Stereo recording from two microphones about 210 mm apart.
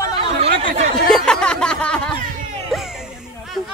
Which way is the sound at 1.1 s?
5° left (ahead or behind).